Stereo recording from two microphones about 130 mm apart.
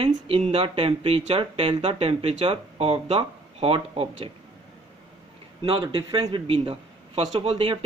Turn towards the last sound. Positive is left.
turn(degrees=-45)  # may be behind; listen again after turning